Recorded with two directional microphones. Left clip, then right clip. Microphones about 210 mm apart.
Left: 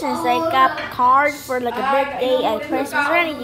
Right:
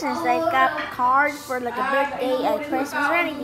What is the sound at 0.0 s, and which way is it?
A woman's voice, 15° left (ahead or behind).